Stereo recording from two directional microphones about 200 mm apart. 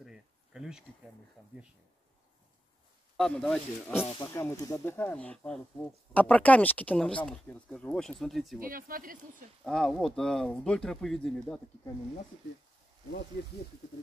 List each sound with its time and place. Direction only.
0.0 s insect: 5° right (ahead or behind)
3.2 s speech: 5° left (ahead or behind)
4.2 s speech: 15° left (ahead or behind)
8.5 s speech: 45° right (ahead or behind)
9.7 s speech: centre (ahead or behind)